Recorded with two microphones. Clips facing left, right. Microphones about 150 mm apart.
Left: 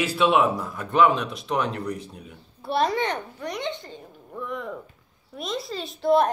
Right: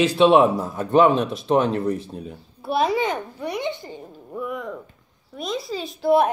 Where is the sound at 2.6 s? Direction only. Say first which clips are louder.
Right 2 dB; 5° right (ahead or behind).